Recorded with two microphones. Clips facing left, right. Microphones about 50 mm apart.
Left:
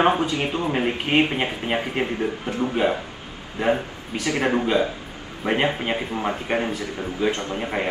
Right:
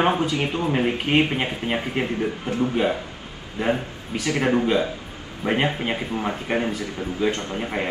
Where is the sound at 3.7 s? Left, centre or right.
Left.